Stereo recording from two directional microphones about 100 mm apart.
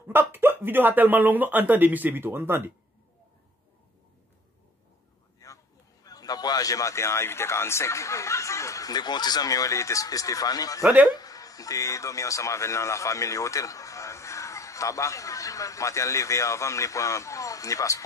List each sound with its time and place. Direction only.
0.1 s speech: 25° right (ahead or behind)
5.4 s a sound: 35° left (ahead or behind)
6.0 s speech: 40° left (ahead or behind)
10.8 s speech: 15° right (ahead or behind)
11.1 s speech: 35° left (ahead or behind)